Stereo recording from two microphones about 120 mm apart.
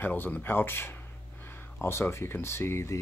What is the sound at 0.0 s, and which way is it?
Speech, 15° left (ahead or behind).